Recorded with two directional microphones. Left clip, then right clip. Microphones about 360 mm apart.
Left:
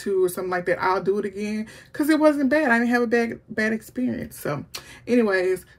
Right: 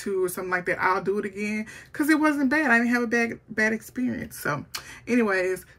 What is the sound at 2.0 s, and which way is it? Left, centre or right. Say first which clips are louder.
Speech: left 3 dB; centre.